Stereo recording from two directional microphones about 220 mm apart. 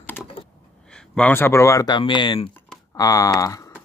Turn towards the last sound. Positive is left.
turn(degrees=15)  # may be behind; listen again after turning